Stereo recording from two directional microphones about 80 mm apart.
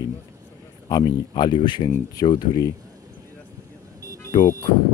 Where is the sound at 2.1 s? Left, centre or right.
Left.